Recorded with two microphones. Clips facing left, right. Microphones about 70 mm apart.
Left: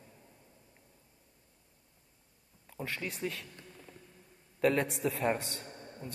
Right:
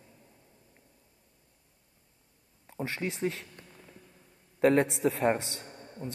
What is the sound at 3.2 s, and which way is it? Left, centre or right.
Speech, right.